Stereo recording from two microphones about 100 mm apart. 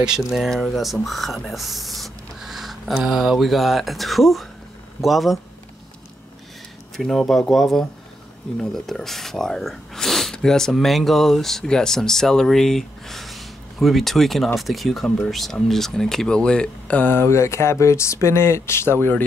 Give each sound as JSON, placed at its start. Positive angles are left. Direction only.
{"t": 0.0, "sound": "speech", "side_deg": -5}
{"t": 7.0, "sound": "speech", "side_deg": 5}
{"t": 15.0, "sound": "speech", "side_deg": 15}